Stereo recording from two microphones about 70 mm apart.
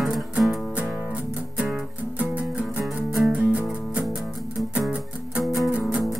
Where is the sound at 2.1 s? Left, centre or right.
Right.